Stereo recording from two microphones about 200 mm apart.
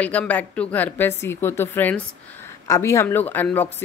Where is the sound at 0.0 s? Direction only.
5° left (ahead or behind).